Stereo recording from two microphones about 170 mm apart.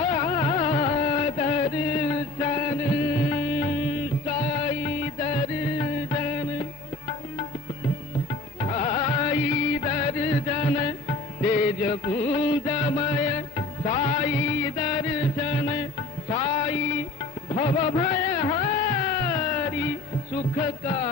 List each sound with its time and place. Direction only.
0.0 s carnatic music: 30° left (ahead or behind)
4.3 s music: 35° left (ahead or behind)
8.5 s music: 35° left (ahead or behind)
17.5 s a sound: 40° left (ahead or behind)
20.5 s music: 35° left (ahead or behind)